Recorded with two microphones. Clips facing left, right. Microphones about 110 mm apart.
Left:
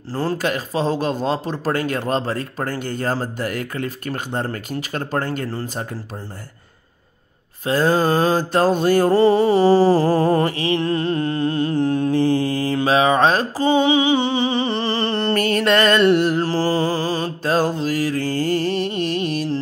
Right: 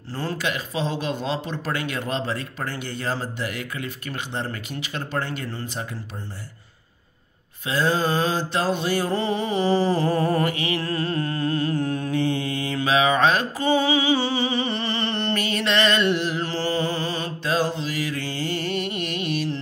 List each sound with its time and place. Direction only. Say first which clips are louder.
0.1 s speech: left 6 dB; 35° left (ahead or behind)
7.6 s mantra: left 5 dB; 45° left (ahead or behind)